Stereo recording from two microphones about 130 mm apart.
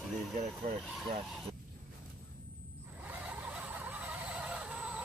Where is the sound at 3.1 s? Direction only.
10° right (ahead or behind).